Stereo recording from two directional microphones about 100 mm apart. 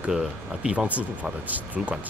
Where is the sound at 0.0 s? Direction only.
10° right (ahead or behind).